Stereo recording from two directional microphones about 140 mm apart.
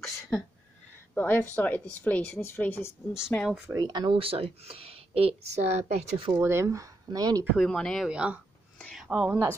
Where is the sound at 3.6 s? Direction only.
25° right (ahead or behind); by 5.8 s 50° right (ahead or behind).